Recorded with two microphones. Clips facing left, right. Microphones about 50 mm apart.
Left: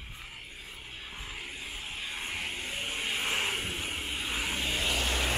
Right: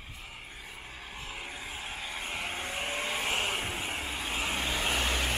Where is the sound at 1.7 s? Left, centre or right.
Right.